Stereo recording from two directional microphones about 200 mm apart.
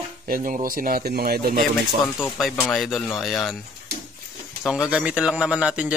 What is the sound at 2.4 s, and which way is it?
A man's voice, centre (ahead or behind).